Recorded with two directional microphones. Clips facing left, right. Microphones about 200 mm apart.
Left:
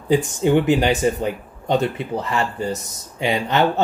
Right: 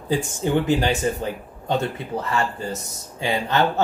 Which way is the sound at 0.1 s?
15° left (ahead or behind).